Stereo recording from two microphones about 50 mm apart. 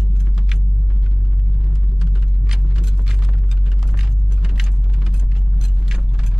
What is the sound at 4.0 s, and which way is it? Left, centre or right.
Vehicle, centre.